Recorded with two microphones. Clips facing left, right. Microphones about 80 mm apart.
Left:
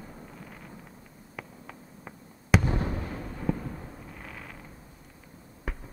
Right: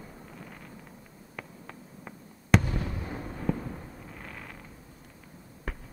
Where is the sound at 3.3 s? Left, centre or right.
Centre.